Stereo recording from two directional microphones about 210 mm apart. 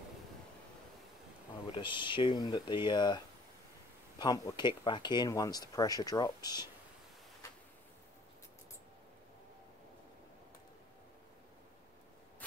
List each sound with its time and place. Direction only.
1.7 s speech: 20° left (ahead or behind)
4.2 s speech: 20° left (ahead or behind)